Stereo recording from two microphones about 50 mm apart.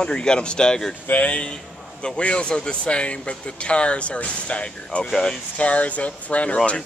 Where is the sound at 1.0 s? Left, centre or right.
Left.